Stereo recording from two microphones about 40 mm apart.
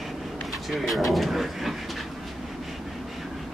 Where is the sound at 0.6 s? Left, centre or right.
Centre.